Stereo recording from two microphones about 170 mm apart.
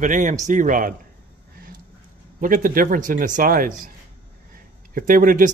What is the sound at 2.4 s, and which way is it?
Speech, 55° right (ahead or behind).